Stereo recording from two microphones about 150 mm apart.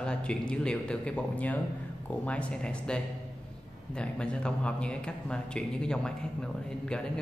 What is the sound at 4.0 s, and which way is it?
A man's voice, 5° left (ahead or behind).